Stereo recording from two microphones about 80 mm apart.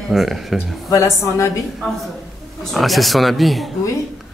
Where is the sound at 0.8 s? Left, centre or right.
Left.